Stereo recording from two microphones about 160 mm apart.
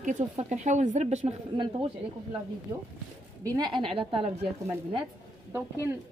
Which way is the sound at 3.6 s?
30° right (ahead or behind).